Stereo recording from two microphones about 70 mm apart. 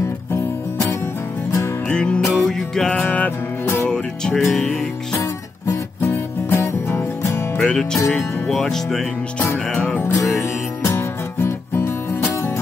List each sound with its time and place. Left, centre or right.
1.9 s music: centre
2.2 s music: centre
2.9 s music: centre
3.9 s music: centre
4.4 s music: centre
5.7 s music: left
7.5 s music: centre
9.7 s music: centre
10.1 s music: left
11.3 s music: left